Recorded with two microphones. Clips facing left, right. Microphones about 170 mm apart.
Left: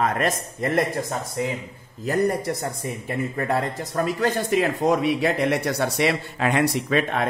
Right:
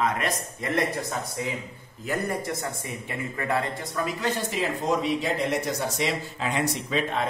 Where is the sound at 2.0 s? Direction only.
40° left (ahead or behind); by 7.3 s 60° left (ahead or behind).